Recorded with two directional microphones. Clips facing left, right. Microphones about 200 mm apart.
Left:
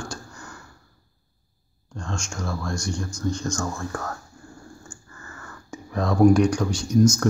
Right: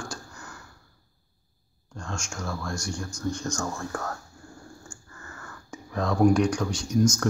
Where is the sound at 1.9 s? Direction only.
5° right (ahead or behind).